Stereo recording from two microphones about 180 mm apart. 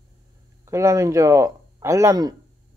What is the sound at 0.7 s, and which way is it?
Speech, 15° right (ahead or behind).